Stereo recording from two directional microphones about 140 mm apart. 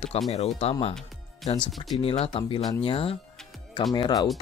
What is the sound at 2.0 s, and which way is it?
Speech, 40° left (ahead or behind).